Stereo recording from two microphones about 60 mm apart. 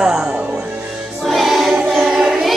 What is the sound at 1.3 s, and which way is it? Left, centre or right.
Choir, centre.